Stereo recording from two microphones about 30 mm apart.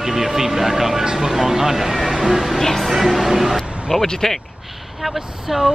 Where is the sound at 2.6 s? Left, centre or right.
Centre.